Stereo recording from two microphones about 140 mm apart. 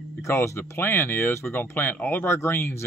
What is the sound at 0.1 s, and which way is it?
A man's voice, 20° left (ahead or behind).